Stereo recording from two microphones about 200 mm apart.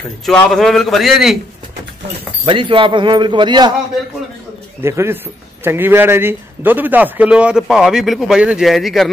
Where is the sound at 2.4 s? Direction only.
25° right (ahead or behind).